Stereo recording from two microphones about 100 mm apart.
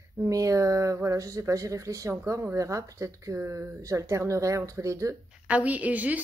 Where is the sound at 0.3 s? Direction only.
35° right (ahead or behind).